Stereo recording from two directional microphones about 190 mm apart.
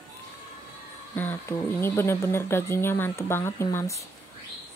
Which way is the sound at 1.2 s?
10° left (ahead or behind).